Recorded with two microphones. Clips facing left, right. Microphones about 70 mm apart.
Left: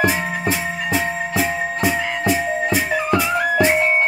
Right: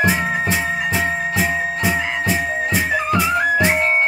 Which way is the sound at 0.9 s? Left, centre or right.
Centre.